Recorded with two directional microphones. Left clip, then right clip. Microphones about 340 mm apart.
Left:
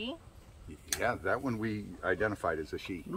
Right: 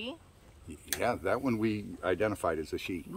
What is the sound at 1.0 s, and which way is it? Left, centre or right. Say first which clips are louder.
Speech: right 1 dB; right.